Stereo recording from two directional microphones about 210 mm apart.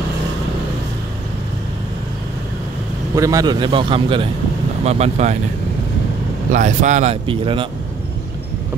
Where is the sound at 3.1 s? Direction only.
15° right (ahead or behind); by 5.3 s 30° right (ahead or behind).